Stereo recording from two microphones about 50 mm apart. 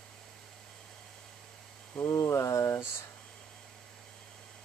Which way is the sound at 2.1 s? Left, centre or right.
Left.